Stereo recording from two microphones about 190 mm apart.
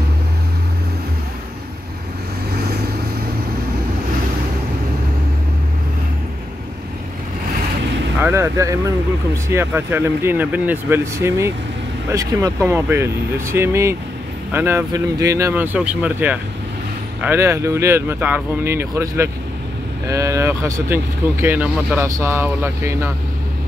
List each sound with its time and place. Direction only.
8.2 s speech: 15° right (ahead or behind)